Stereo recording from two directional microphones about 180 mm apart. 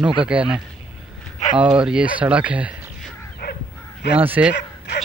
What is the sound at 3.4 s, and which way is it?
Crow, 60° left (ahead or behind).